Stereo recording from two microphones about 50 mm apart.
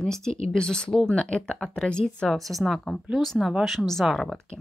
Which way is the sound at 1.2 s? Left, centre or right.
Left.